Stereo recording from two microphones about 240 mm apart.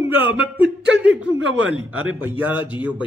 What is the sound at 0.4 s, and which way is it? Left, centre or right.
Speech, centre.